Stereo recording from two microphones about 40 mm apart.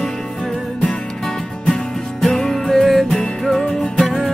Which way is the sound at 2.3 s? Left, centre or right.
Centre.